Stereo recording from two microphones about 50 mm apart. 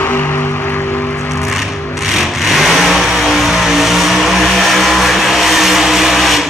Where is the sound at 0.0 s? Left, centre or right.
Left.